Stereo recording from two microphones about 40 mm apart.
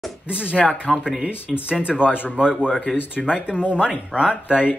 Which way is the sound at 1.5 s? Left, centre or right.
Centre.